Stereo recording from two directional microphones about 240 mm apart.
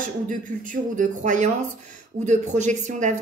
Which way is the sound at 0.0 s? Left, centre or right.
Right.